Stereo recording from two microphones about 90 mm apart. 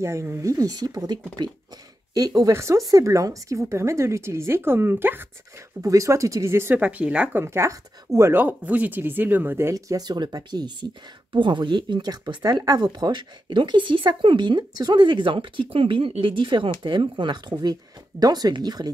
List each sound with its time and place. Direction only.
0.0 s a woman's voice: 30° right (ahead or behind)
1.4 s speech: 55° right (ahead or behind)
2.1 s speech: 45° right (ahead or behind)
2.5 s a woman's voice: 30° right (ahead or behind)
5.8 s a woman's voice: 35° right (ahead or behind)
6.8 s speech: 15° right (ahead or behind)
7.3 s speech: 30° right (ahead or behind)
8.4 s speech: 20° right (ahead or behind); by 10.9 s 50° right (ahead or behind)
11.3 s speech: 65° right (ahead or behind)
16.8 s speech: 60° right (ahead or behind)